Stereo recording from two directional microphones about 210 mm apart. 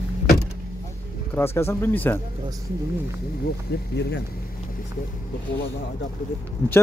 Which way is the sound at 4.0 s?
55° left (ahead or behind).